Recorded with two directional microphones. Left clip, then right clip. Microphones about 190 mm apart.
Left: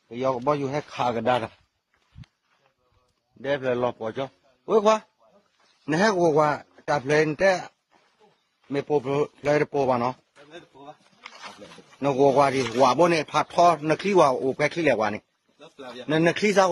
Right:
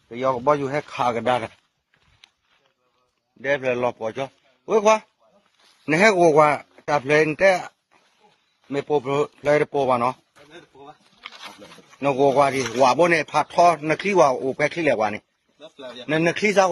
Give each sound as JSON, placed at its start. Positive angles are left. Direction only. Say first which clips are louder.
{"t": 0.4, "sound": "a man's voice", "louder": "right 4 dB", "side_deg": -5}
{"t": 3.4, "sound": "a man's voice", "louder": "right 3 dB", "side_deg": -5}
{"t": 5.9, "sound": "a man's voice", "louder": "right 5 dB", "side_deg": -15}
{"t": 11.1, "sound": "a sound", "louder": "right 4 dB", "side_deg": -35}
{"t": 12.0, "sound": "a man's voice", "louder": "right 2 dB", "side_deg": 0}
{"t": 15.6, "sound": "a man's voice", "louder": "right 2 dB", "side_deg": 25}
{"t": 16.1, "sound": "a man's voice", "louder": "right 1 dB", "side_deg": 0}